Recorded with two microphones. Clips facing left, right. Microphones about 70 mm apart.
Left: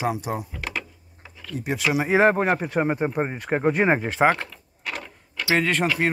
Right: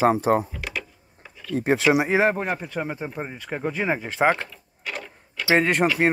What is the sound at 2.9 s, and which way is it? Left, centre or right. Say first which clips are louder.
Speech: left 7 dB; left.